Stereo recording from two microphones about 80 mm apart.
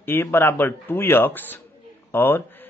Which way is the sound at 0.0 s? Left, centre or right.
Left.